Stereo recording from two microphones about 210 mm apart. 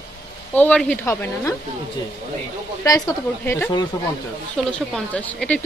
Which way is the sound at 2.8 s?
15° left (ahead or behind).